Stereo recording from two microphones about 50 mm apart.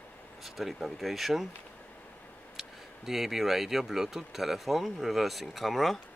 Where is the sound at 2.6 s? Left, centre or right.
Centre.